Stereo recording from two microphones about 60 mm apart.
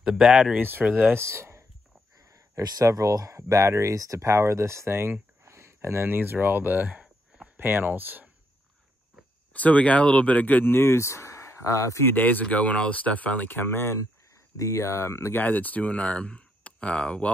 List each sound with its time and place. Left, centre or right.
0.0 s speech: centre
0.6 s speech: right
1.2 s speech: right
2.3 s speech: right
4.3 s speech: right
9.5 s speech: left
12.0 s speech: left
14.6 s speech: left
15.3 s speech: left